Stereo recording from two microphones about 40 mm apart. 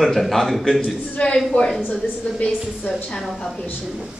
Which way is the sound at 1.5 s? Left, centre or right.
Left.